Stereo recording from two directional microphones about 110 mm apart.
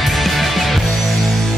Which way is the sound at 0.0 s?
Centre (ahead or behind).